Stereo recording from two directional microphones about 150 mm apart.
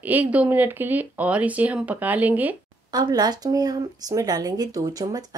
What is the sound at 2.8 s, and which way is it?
Speech, 25° right (ahead or behind).